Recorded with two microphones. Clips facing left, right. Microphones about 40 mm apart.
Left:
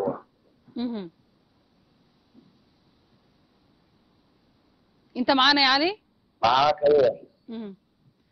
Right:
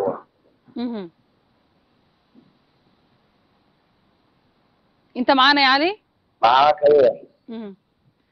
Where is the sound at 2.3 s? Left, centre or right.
Centre.